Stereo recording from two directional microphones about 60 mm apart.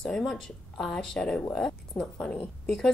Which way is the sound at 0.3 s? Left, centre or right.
Centre.